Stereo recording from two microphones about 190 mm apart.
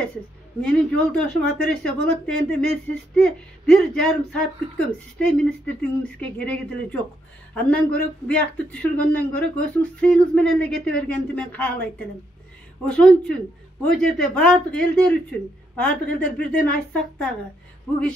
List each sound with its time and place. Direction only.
0.6 s a man's voice: 5° left (ahead or behind)
12.8 s a man's voice: 5° left (ahead or behind)